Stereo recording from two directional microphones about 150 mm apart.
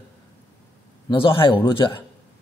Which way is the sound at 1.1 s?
35° left (ahead or behind).